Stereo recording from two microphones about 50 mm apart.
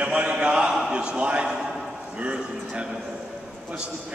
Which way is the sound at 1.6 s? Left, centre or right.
Centre.